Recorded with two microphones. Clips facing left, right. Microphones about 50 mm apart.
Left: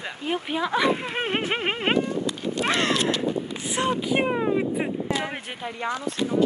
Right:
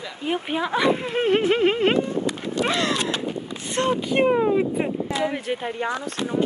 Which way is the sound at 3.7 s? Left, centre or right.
Centre.